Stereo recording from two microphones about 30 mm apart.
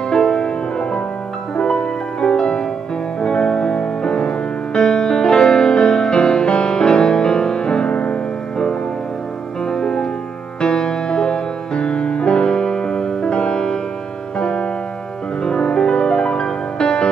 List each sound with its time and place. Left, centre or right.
0.1 s music: left
9.7 s music: left